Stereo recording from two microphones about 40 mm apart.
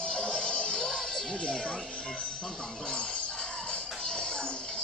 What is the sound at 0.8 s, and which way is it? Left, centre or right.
Music, centre.